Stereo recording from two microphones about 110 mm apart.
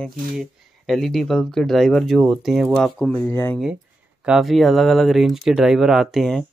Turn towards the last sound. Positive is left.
turn(degrees=5)  # may be behind; listen again after turning